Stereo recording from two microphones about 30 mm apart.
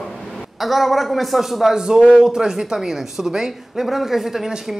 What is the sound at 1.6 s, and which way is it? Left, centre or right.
A woman's voice, right.